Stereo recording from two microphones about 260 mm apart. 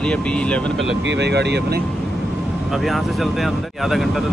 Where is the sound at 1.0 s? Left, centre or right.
Right.